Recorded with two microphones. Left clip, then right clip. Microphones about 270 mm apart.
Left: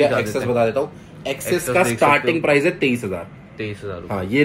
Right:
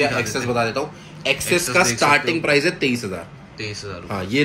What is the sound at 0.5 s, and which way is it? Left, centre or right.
Speech, centre.